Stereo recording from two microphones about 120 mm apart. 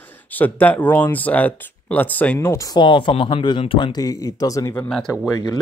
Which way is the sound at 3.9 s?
30° left (ahead or behind).